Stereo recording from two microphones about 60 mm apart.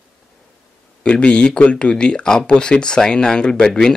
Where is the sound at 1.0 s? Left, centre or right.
Centre.